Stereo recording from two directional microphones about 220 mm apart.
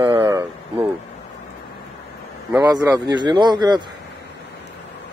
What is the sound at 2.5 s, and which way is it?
A man's voice, 15° right (ahead or behind).